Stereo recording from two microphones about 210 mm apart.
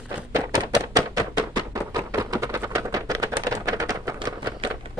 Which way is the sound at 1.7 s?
15° right (ahead or behind).